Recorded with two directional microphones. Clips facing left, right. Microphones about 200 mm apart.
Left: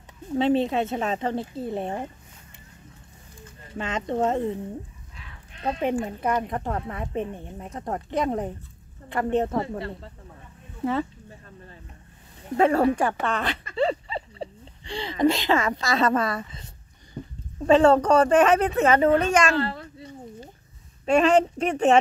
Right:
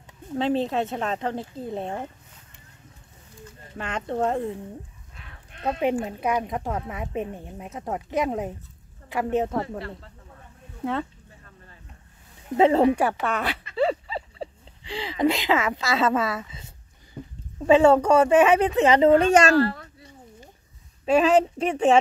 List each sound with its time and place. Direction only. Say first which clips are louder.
0.3 s speech: left 2 dB; 5° left (ahead or behind)
3.7 s speech: left 2 dB; centre (ahead or behind)
5.6 s speech: right 1 dB; 10° right (ahead or behind)
9.6 s speech: left 1 dB; 25° left (ahead or behind)
10.8 s speech: left 2 dB; centre (ahead or behind)
12.5 s speech: right 2 dB; 20° right (ahead or behind)
12.9 s speech: right 1 dB; 10° right (ahead or behind)
17.2 s a sound: left 2 dB; 5° left (ahead or behind)
17.6 s speech: right 1 dB; 10° right (ahead or behind)
19.0 s a woman's voice: right 3 dB; 30° right (ahead or behind)
19.5 s speech: right 5 dB; 25° left (ahead or behind)
21.1 s speech: even; 5° right (ahead or behind)